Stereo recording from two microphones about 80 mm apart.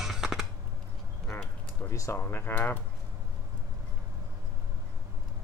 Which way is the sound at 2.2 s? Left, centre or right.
Left.